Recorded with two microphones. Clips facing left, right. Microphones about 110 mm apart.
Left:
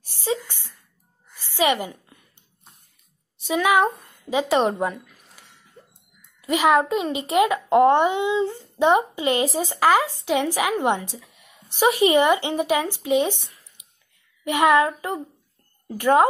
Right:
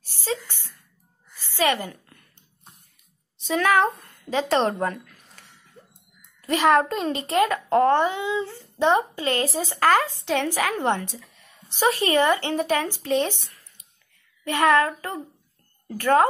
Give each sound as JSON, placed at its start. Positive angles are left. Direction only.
{"t": 0.1, "sound": "a sound", "side_deg": 15}
{"t": 3.4, "sound": "a child's voice", "side_deg": 10}
{"t": 6.4, "sound": "a child's voice", "side_deg": 10}